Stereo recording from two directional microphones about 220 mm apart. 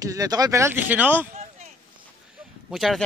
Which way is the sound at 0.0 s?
15° right (ahead or behind).